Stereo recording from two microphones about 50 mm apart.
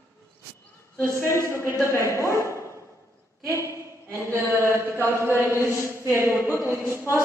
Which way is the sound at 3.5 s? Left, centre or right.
Right.